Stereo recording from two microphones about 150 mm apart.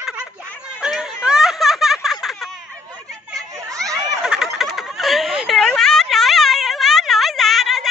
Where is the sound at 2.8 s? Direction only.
25° right (ahead or behind).